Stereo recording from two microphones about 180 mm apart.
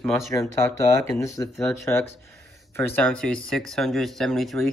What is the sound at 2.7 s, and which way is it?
Speech, 10° left (ahead or behind).